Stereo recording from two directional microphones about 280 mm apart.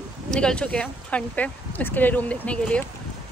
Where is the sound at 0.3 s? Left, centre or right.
Centre.